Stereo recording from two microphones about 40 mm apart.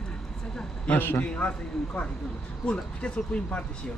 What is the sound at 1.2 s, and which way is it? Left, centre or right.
Speech, left.